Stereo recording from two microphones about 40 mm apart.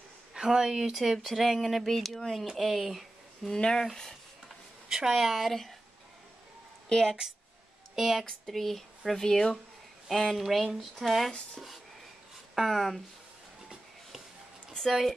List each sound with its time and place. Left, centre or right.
0.3 s speech: centre
1.1 s speech: centre
3.4 s speech: centre
4.8 s a sound: centre
5.1 s speech: centre
6.9 s speech: centre
7.9 s speech: centre
8.5 s speech: centre
10.5 s speech: centre
12.5 s speech: centre
14.9 s speech: centre